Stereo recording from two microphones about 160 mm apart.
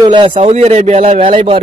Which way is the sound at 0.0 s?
30° right (ahead or behind).